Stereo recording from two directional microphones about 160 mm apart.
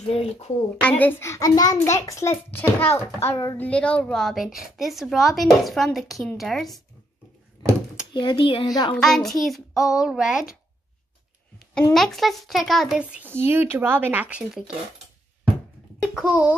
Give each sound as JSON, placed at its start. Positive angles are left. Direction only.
{"t": 0.1, "sound": "speech", "side_deg": 40}
{"t": 0.7, "sound": "a child's voice", "side_deg": 10}
{"t": 8.1, "sound": "a woman's voice", "side_deg": 30}
{"t": 8.9, "sound": "speech", "side_deg": 0}
{"t": 11.9, "sound": "speech", "side_deg": 0}
{"t": 16.0, "sound": "a child's voice", "side_deg": -5}